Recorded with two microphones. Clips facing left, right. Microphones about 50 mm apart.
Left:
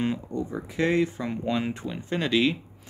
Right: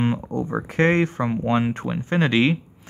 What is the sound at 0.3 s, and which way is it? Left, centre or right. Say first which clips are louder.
Speech: right 5 dB; right.